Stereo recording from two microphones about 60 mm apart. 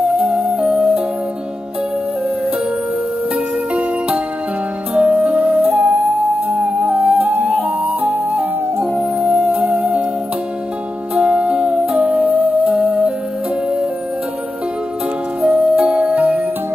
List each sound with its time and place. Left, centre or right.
0.1 s music: centre
4.9 s music: right
7.4 s flute: right
9.2 s music: centre
11.1 s music: centre
15.4 s music: centre